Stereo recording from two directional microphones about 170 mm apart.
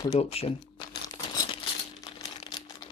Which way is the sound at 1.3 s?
25° left (ahead or behind).